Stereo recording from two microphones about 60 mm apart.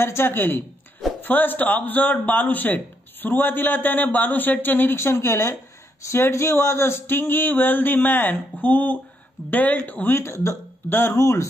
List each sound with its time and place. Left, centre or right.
0.0 s a man's voice: left
4.9 s a man's voice: left
10.1 s speech: left
10.9 s a man's voice: left
11.1 s speech: left